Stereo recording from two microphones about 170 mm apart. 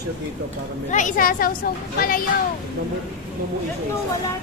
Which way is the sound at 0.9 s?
50° left (ahead or behind).